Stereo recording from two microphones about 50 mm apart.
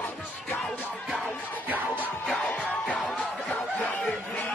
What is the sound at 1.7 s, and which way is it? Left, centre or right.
Music, right.